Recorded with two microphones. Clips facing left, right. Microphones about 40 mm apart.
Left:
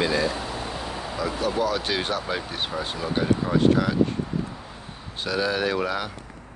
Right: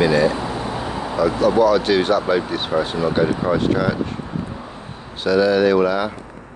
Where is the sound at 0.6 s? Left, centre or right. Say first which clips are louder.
Right 7 dB; right.